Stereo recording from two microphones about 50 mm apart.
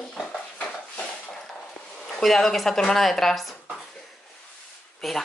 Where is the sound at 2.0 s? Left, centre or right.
Centre.